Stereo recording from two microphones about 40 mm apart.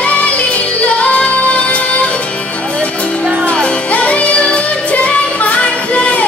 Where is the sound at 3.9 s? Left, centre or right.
Left.